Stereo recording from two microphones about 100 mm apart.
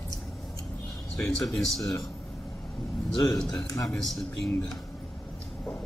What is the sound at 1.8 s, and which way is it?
Speech, 35° left (ahead or behind).